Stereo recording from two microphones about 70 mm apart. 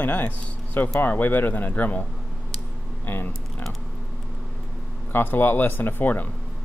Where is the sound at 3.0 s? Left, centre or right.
Left.